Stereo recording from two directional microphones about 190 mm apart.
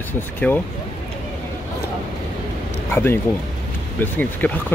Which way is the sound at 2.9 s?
10° left (ahead or behind).